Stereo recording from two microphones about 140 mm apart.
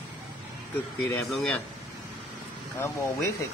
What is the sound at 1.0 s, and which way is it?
Speech, 20° left (ahead or behind).